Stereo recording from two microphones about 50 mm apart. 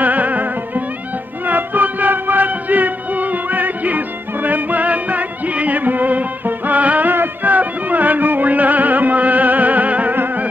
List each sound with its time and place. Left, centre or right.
0.0 s music: right